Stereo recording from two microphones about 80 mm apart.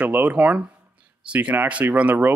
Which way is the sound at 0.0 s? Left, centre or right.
Centre.